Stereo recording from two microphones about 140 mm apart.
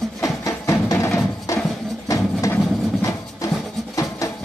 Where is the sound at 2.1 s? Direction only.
20° left (ahead or behind).